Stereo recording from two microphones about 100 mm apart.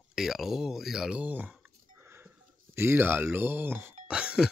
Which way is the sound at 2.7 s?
20° right (ahead or behind).